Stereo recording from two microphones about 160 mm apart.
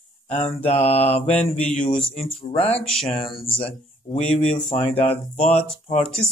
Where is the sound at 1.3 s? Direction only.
10° left (ahead or behind).